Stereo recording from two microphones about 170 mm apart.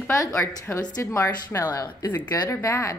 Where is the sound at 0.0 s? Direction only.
15° left (ahead or behind).